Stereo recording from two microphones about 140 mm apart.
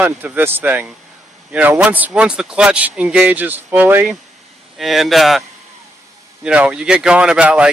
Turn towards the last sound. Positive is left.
turn(degrees=-10)  # may be behind; listen again after turning